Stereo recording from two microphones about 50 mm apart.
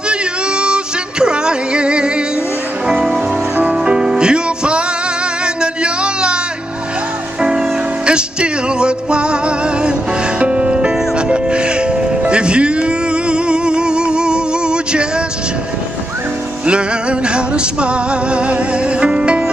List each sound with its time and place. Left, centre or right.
0.1 s a sound: centre
1.2 s music: centre
7.4 s music: centre
17.3 s music: right